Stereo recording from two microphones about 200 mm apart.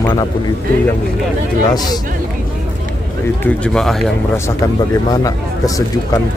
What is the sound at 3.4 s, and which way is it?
Speech, 5° left (ahead or behind).